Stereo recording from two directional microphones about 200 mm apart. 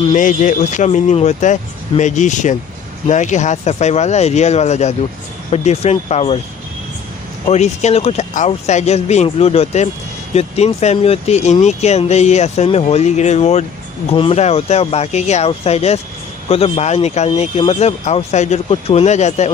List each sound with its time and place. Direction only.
0.1 s speech: 40° left (ahead or behind)
7.4 s speech: 35° left (ahead or behind)